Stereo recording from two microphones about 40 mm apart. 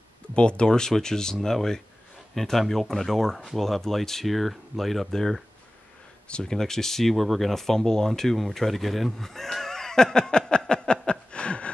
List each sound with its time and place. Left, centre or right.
0.4 s speech: left; by 5.4 s centre
6.2 s speech: left
6.5 s speech: centre; by 11.7 s left